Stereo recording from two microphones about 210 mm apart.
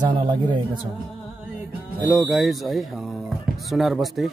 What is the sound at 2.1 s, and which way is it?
Speech, centre (ahead or behind).